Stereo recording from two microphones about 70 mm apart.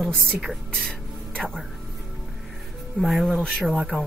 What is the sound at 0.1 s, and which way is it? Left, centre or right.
Speech, centre.